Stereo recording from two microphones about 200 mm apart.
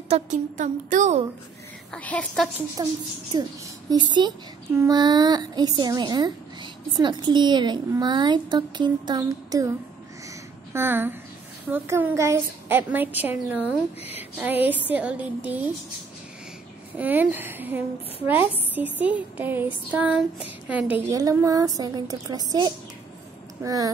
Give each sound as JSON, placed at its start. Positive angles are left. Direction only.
{"t": 0.1, "sound": "a woman's voice", "side_deg": -40}
{"t": 1.9, "sound": "a woman's voice", "side_deg": 5}
{"t": 2.8, "sound": "a woman's voice", "side_deg": -20}
{"t": 16.9, "sound": "a woman's voice", "side_deg": -10}
{"t": 21.1, "sound": "a woman's voice", "side_deg": -15}